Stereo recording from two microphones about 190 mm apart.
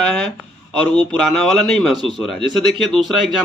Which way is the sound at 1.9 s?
25° right (ahead or behind).